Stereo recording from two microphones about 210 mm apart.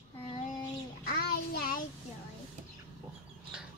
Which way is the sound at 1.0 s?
45° left (ahead or behind).